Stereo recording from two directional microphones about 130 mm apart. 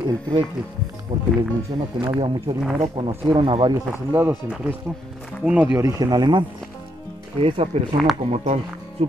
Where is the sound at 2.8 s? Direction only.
45° right (ahead or behind).